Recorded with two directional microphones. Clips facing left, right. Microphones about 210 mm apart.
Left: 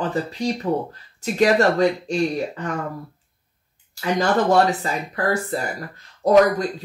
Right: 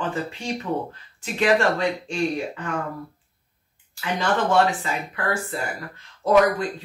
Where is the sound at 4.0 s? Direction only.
40° left (ahead or behind).